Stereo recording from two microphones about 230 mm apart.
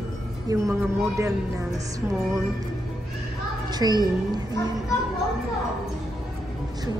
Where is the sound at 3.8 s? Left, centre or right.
Centre.